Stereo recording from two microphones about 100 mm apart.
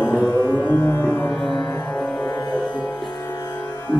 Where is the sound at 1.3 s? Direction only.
Centre (ahead or behind).